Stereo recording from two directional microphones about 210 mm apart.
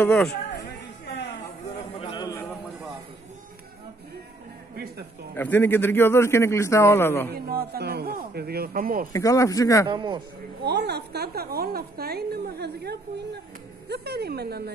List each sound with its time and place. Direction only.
0.0 s a man's voice: 5° left (ahead or behind)
2.0 s a sound: 25° left (ahead or behind)
5.3 s a man's voice: 10° left (ahead or behind)
7.3 s a woman's voice: 45° right (ahead or behind)
9.1 s a man's voice: 15° left (ahead or behind)
9.8 s a man's voice: 20° right (ahead or behind)
10.6 s a woman's voice: 50° right (ahead or behind)